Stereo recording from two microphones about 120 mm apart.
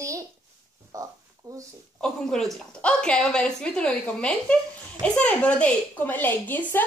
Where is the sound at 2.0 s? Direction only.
5° left (ahead or behind).